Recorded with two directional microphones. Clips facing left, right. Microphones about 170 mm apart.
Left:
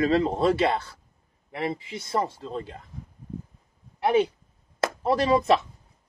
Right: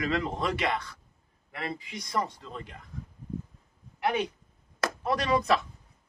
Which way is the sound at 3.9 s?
30° left (ahead or behind).